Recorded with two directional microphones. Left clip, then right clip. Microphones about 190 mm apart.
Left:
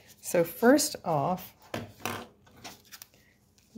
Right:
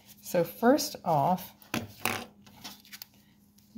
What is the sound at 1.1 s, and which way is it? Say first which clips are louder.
Speech: right 4 dB; centre (ahead or behind).